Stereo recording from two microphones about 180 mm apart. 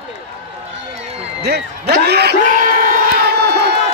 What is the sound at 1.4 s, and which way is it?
Speech, 65° right (ahead or behind).